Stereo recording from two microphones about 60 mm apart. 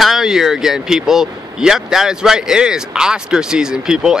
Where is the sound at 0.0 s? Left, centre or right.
Centre.